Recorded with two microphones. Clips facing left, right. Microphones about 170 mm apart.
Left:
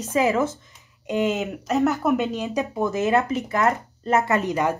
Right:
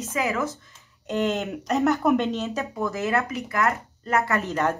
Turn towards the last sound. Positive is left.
turn(degrees=15)  # may be behind; listen again after turning